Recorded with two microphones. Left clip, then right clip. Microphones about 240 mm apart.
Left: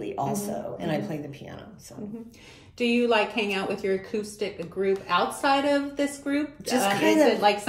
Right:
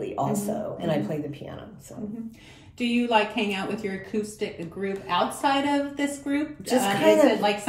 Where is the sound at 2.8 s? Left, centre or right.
Centre.